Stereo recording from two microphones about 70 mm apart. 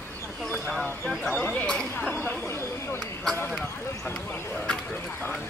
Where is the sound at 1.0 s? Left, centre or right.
Centre.